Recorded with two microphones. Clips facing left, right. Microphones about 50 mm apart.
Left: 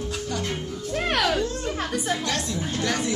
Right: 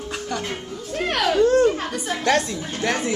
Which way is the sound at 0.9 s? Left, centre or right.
Centre.